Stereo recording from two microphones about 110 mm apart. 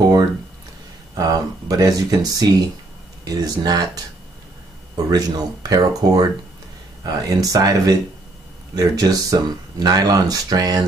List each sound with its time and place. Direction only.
1.1 s speech: 35° right (ahead or behind)